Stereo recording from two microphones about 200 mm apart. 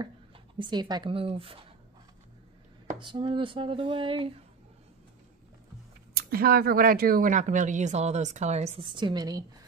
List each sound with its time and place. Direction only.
0.6 s speech: 20° right (ahead or behind)
3.0 s speech: 25° right (ahead or behind)
6.1 s a woman's voice: 50° right (ahead or behind); by 9.4 s 20° right (ahead or behind)